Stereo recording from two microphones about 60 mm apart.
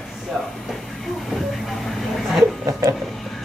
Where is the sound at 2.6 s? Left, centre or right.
Right.